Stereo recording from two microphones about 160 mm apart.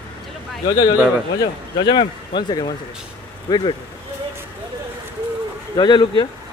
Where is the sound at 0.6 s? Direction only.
25° left (ahead or behind).